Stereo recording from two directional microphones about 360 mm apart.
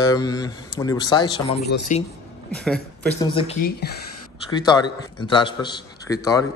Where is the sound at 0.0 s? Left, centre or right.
Centre.